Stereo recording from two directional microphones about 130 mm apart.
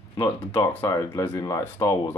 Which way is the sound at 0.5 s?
15° left (ahead or behind).